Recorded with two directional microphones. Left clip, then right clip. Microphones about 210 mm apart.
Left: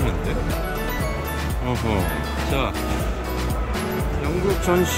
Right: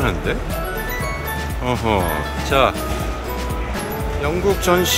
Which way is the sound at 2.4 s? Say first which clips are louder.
Right 10 dB; 5° left (ahead or behind).